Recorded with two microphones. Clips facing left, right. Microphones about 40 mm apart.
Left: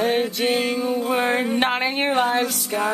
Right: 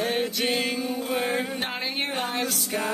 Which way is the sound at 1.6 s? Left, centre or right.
Left.